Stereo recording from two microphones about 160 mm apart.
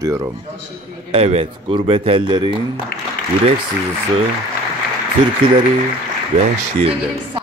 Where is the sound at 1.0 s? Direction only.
40° right (ahead or behind).